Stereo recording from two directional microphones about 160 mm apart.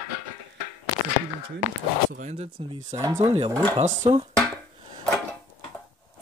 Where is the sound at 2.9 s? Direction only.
20° right (ahead or behind).